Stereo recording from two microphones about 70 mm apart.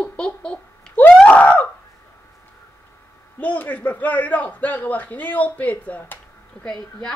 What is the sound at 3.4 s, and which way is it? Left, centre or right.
A man's voice, left.